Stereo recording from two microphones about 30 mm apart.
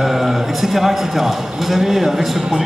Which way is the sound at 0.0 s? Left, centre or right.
Centre.